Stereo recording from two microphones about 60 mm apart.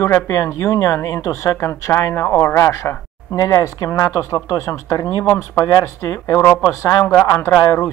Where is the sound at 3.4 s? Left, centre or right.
Left.